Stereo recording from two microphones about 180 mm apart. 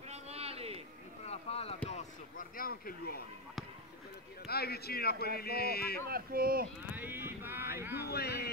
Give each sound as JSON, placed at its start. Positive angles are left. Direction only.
{"t": 0.1, "sound": "a sound", "side_deg": -35}
{"t": 1.2, "sound": "a sound", "side_deg": 35}
{"t": 1.9, "sound": "speech", "side_deg": 45}
{"t": 4.5, "sound": "speech", "side_deg": 60}
{"t": 6.0, "sound": "speech", "side_deg": -55}
{"t": 6.9, "sound": "speech", "side_deg": -10}
{"t": 8.1, "sound": "speech", "side_deg": 65}